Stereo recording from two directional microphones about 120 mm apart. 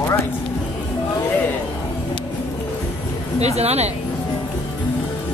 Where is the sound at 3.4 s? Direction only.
60° right (ahead or behind).